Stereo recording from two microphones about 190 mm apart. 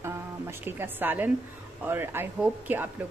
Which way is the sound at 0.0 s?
10° right (ahead or behind).